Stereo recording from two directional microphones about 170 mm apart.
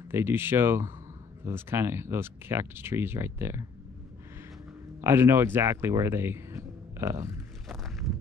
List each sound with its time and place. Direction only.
0.1 s speech: 15° right (ahead or behind)
5.0 s speech: 15° right (ahead or behind)
7.6 s walk: centre (ahead or behind)